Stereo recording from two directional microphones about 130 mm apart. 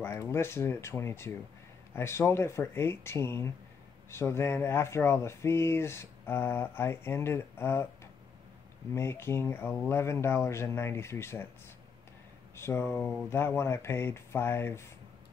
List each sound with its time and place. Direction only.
0.0 s speech: 20° left (ahead or behind)
12.5 s speech: 20° left (ahead or behind)